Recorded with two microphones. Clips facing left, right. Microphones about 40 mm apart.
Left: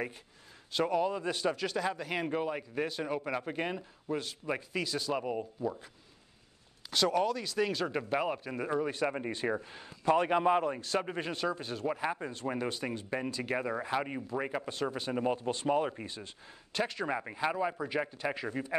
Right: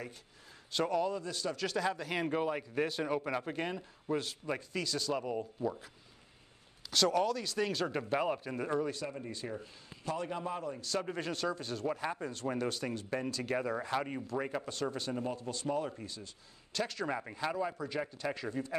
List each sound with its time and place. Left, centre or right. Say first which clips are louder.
0.7 s speech: left 2 dB; centre
1.2 s speech: left 6 dB; left
1.5 s speech: left 1 dB; centre
4.5 s speech: left 4 dB; centre
5.6 s speech: left 1 dB; centre
6.9 s speech: left 1 dB; centre
9.0 s a man's voice: left 8 dB; left
10.8 s speech: left 3 dB; left
15.1 s speech: left 6 dB; left
16.7 s speech: left 3 dB; centre